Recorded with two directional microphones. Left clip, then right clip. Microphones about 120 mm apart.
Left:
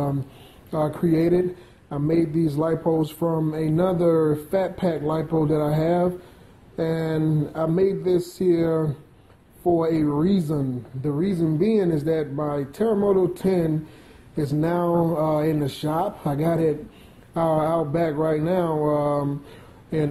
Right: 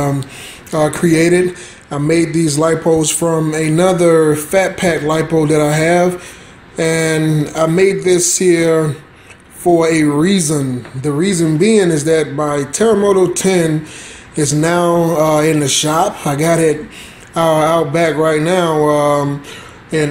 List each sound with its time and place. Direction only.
0.7 s a man's voice: 5° left (ahead or behind)
3.2 s a man's voice: 15° right (ahead or behind)
3.4 s a man's voice: 10° left (ahead or behind)
9.8 s a man's voice: 5° left (ahead or behind)
18.9 s a sound: 20° left (ahead or behind)